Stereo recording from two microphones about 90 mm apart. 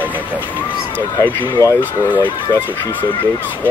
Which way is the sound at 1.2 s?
30° left (ahead or behind).